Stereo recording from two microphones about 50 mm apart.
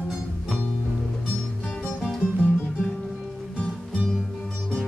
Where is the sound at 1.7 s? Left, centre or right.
Left.